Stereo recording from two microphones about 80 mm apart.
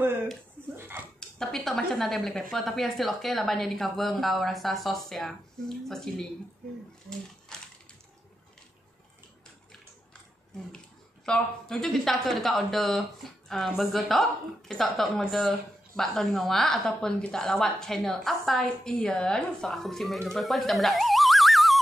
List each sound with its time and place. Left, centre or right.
0.7 s a sound: right
1.4 s speech: centre
11.2 s speech: centre